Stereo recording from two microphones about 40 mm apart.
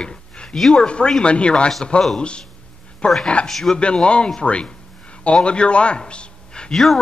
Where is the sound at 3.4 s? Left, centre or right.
Centre.